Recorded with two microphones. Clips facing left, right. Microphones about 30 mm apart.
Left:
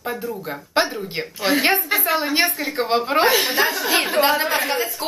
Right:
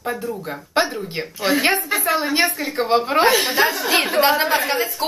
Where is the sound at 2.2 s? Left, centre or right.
Left.